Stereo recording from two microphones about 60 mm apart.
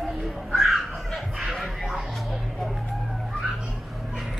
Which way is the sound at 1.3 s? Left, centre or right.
Centre.